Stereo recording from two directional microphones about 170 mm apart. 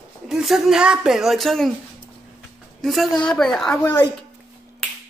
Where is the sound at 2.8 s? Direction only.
Centre (ahead or behind).